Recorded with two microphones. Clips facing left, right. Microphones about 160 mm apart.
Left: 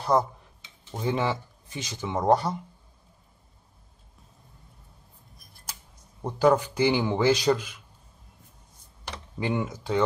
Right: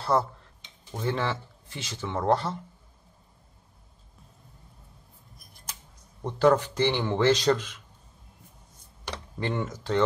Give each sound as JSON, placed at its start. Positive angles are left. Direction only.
{"t": 0.0, "sound": "a sound", "side_deg": 15}
{"t": 0.9, "sound": "speech", "side_deg": 15}
{"t": 6.2, "sound": "speech", "side_deg": 10}
{"t": 9.4, "sound": "speech", "side_deg": 10}